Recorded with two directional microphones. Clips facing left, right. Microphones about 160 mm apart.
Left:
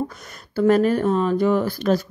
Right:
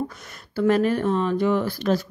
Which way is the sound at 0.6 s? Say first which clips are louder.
Left 3 dB; 45° left (ahead or behind).